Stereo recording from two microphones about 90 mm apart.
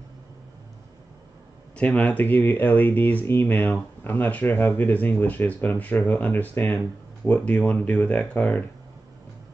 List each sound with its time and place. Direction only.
1.8 s speech: 15° left (ahead or behind)